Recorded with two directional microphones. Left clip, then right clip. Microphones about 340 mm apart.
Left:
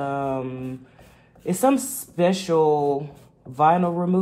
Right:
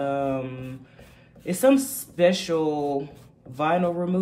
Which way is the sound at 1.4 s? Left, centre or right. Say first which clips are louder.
Right 1 dB; centre.